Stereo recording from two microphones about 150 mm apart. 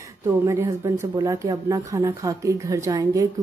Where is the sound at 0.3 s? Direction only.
20° right (ahead or behind).